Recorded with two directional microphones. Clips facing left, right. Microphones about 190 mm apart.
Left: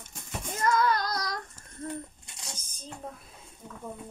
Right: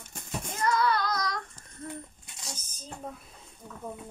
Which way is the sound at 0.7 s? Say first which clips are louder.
Left 1 dB; 45° left (ahead or behind).